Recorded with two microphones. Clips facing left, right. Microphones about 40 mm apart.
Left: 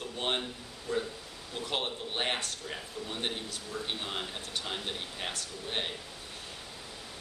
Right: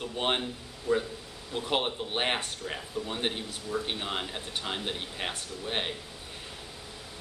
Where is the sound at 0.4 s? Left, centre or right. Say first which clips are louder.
Right 3 dB; centre.